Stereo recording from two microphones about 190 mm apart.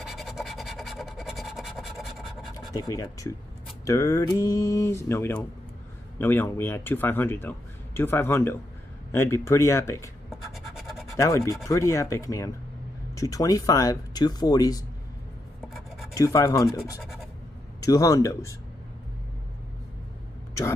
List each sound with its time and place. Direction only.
0.0 s scratch: centre (ahead or behind)
2.7 s speech: 20° left (ahead or behind)
10.3 s scratch: centre (ahead or behind)
11.1 s speech: 15° left (ahead or behind)
16.2 s speech: 15° left (ahead or behind)
17.0 s scratch: centre (ahead or behind)
17.7 s speech: 20° left (ahead or behind)